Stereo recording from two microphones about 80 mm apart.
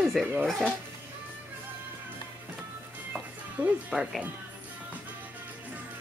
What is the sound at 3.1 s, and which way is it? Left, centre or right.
Music, centre.